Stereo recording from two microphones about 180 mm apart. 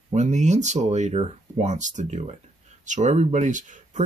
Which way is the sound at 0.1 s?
40° right (ahead or behind).